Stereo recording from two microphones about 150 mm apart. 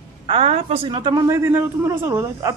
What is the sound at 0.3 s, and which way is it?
A man's voice, 40° right (ahead or behind).